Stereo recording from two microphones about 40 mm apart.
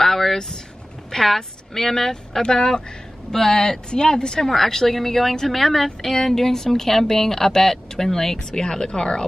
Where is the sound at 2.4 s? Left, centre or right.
Centre.